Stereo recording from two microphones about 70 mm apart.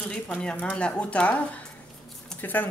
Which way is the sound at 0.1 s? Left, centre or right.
Centre.